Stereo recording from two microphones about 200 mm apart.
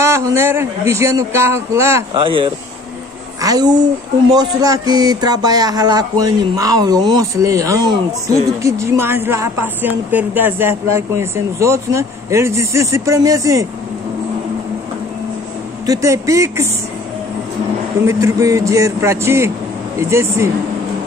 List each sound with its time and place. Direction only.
0.0 s speech: 15° right (ahead or behind)
2.2 s speech: 25° right (ahead or behind)
15.9 s speech: 15° right (ahead or behind)
18.0 s speech: 15° right (ahead or behind)